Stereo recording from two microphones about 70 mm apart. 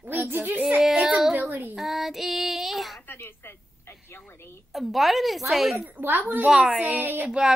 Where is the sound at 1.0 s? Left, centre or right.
Centre.